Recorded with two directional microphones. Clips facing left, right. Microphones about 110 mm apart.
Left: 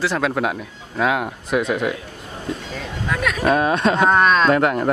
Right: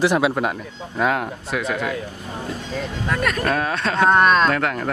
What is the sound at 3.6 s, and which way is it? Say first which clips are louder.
Speech: left 3 dB; 20° left (ahead or behind).